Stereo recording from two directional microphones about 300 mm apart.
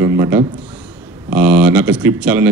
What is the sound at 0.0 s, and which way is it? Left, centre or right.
A man's voice, centre.